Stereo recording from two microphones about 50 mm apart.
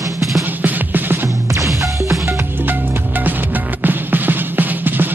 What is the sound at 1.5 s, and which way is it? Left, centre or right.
Music, right.